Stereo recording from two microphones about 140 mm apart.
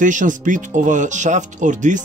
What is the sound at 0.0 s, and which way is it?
Speech, 65° right (ahead or behind).